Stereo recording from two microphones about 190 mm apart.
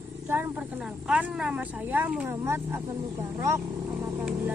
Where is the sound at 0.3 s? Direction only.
10° right (ahead or behind).